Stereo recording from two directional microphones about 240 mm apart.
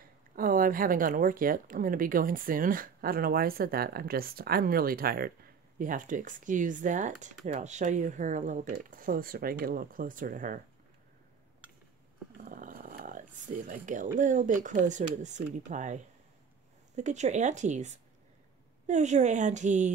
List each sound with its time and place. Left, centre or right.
0.4 s speech: right
12.4 s speech: right